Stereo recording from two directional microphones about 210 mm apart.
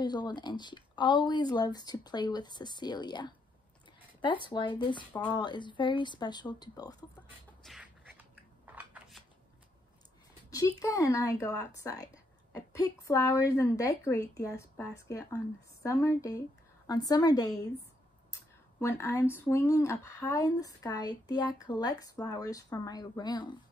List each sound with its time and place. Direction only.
0.0 s speech: 20° left (ahead or behind)
7.2 s a sound: 5° right (ahead or behind)
10.5 s a woman's voice: 15° left (ahead or behind)